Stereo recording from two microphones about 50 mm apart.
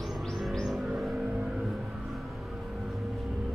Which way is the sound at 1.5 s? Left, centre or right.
Centre.